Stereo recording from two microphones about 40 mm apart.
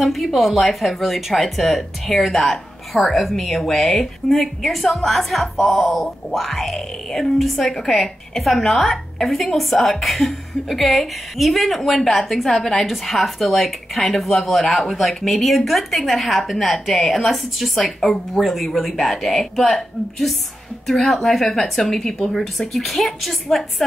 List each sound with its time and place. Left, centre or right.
0.0 s a woman's voice: centre